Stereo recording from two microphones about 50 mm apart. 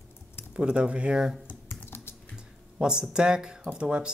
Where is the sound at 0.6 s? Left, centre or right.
Right.